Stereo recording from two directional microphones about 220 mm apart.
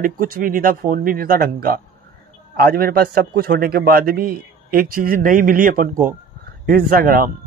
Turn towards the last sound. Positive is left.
turn(degrees=-40)  # may be behind; listen again after turning